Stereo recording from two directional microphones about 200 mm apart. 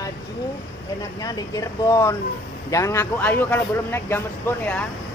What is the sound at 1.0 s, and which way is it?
Speech, 20° left (ahead or behind).